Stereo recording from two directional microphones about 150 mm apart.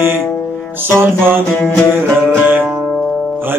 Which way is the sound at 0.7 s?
15° right (ahead or behind).